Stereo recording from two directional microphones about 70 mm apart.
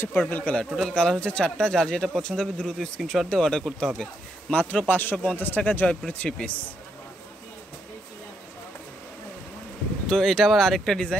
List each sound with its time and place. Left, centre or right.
0.0 s a man's voice: left
0.7 s speech: centre
4.5 s a man's voice: left
10.0 s speech: centre